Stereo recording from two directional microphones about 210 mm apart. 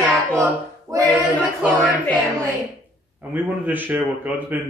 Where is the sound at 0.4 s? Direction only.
15° right (ahead or behind).